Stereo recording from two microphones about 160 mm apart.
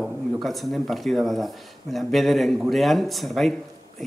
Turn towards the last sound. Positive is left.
turn(degrees=0)  # may be behind; listen again after turning